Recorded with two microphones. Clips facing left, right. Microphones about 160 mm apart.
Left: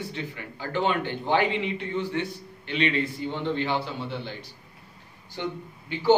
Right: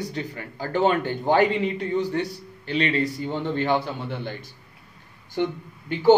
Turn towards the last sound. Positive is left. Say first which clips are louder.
# right 4 dB
turn(degrees=-50)  # may be behind; listen again after turning